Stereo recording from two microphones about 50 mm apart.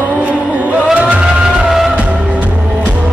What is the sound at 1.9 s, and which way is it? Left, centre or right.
Music, right.